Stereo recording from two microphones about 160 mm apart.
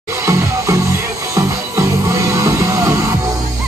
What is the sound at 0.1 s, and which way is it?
Music, 20° right (ahead or behind).